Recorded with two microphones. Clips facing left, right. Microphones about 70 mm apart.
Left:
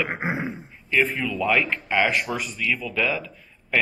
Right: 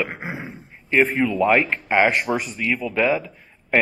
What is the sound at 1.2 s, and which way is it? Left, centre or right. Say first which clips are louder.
Speech: right 5 dB; right.